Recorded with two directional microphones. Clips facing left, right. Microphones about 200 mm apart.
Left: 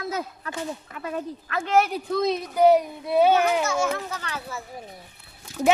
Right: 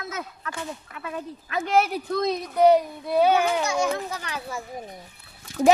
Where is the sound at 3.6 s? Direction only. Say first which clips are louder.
Even; 15° right (ahead or behind).